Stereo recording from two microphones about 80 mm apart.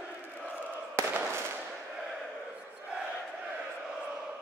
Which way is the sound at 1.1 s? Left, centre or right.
Right.